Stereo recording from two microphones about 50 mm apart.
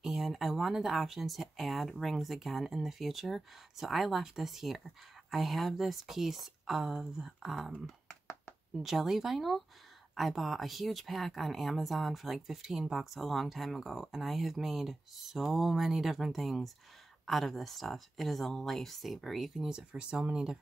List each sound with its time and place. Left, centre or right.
0.0 s speech: centre
8.7 s speech: centre
19.9 s speech: right